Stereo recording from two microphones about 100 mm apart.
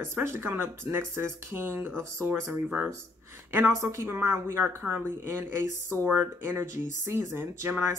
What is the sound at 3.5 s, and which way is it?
Speech, 25° right (ahead or behind).